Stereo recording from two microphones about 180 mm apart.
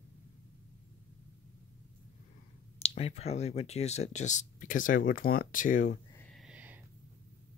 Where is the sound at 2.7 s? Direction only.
35° left (ahead or behind).